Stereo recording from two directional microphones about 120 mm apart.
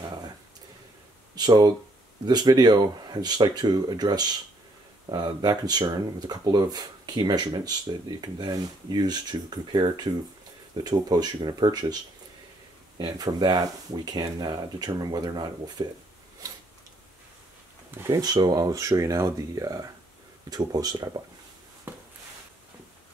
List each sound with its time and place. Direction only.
1.3 s speech: 35° right (ahead or behind)
16.4 s zipper: 30° right (ahead or behind)
17.9 s speech: 25° right (ahead or behind)
21.9 s a sound: 15° right (ahead or behind)